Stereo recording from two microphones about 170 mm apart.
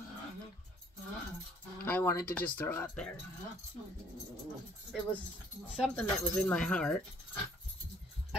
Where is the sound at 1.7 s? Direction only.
10° left (ahead or behind).